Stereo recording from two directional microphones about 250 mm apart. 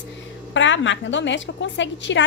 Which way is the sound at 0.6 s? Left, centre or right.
Left.